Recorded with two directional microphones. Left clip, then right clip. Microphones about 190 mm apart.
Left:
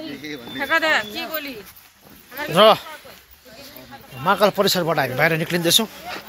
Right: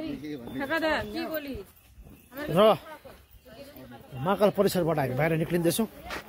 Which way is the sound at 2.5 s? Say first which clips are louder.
Left 8 dB; 5° right (ahead or behind).